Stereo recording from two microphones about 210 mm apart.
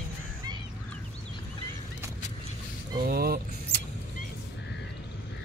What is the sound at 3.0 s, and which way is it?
Speech, 45° right (ahead or behind).